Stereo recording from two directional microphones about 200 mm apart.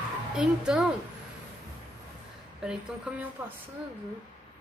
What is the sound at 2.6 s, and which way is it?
Speech, 5° right (ahead or behind).